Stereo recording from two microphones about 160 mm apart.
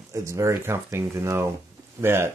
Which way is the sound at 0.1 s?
20° right (ahead or behind).